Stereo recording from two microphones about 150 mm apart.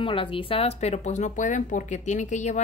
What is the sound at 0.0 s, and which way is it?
Speech, 35° left (ahead or behind).